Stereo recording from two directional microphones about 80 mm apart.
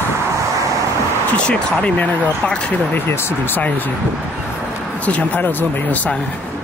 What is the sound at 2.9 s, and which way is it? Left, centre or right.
Speech, left.